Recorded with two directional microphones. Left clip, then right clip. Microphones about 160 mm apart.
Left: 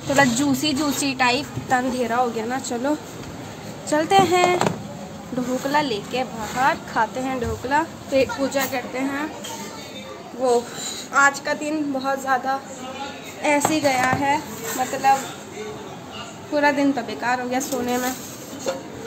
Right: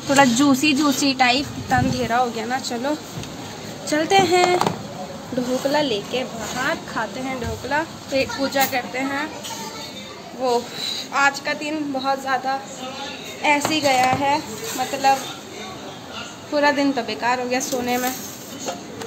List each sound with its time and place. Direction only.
0.1 s a woman's voice: 15° left (ahead or behind)
5.7 s speech: 25° left (ahead or behind); by 9.3 s 10° left (ahead or behind)
10.4 s a woman's voice: 15° left (ahead or behind)
13.7 s a woman's voice: 15° left (ahead or behind)
16.5 s a woman's voice: 10° left (ahead or behind)